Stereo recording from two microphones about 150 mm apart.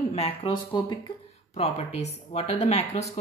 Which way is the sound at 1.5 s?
45° left (ahead or behind).